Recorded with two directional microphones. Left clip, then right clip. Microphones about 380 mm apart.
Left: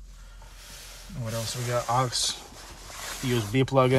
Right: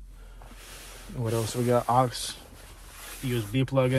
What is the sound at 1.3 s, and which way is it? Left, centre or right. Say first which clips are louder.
Speech: right 4 dB; centre.